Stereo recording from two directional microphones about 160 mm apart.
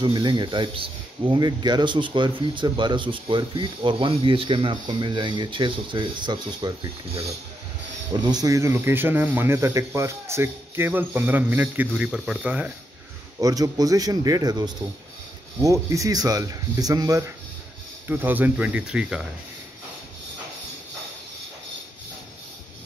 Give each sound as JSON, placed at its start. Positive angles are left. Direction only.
{"t": 0.0, "sound": "speech", "side_deg": -25}
{"t": 8.1, "sound": "speech", "side_deg": -25}
{"t": 13.4, "sound": "speech", "side_deg": -20}